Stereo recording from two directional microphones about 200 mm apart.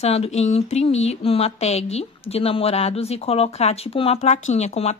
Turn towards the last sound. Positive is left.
turn(degrees=35)  # may be behind; listen again after turning